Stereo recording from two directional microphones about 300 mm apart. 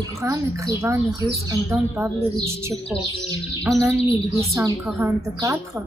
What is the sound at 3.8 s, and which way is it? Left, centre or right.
A woman's voice, centre.